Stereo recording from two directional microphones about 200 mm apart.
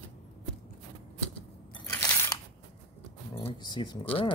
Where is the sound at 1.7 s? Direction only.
15° left (ahead or behind).